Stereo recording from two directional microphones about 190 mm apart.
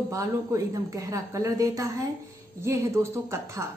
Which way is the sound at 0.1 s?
15° right (ahead or behind).